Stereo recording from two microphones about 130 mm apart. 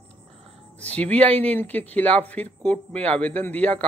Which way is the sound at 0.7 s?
10° left (ahead or behind).